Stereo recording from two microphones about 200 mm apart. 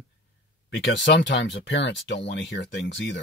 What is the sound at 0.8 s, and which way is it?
Speech, 60° left (ahead or behind).